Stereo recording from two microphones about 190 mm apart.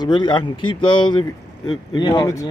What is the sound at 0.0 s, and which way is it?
Speech, 25° left (ahead or behind).